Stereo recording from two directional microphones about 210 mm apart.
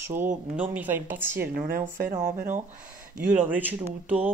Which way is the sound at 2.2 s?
40° right (ahead or behind).